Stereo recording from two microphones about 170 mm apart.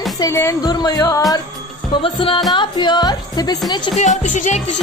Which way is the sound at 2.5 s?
25° left (ahead or behind).